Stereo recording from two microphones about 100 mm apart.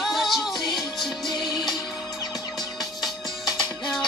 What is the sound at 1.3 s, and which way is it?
Music, 45° left (ahead or behind).